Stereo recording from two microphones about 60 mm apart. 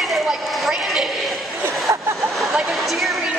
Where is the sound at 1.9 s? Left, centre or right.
Right.